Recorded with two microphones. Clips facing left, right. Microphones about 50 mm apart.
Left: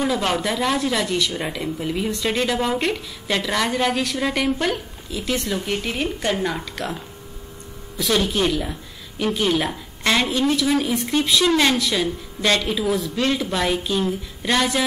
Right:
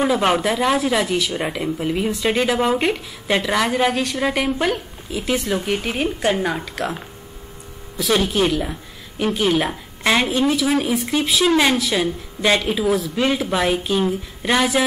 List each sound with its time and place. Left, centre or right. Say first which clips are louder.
0.0 s speech: right 4 dB; right
0.4 s speech: right 3 dB; centre
8.1 s speech: right 2 dB; centre
12.8 s speech: right 3 dB; centre
13.1 s speech: right 2 dB; centre